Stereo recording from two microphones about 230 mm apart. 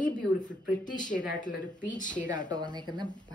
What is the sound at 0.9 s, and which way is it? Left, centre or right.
Speech, centre.